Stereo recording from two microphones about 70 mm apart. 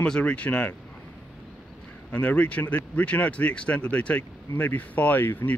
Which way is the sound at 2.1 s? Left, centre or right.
Left.